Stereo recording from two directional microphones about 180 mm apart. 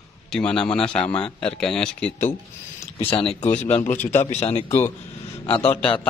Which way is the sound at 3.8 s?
10° left (ahead or behind).